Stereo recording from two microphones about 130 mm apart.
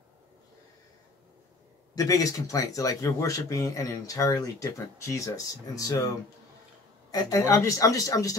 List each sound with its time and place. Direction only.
2.0 s speech: 25° left (ahead or behind)
7.1 s speech: 25° left (ahead or behind)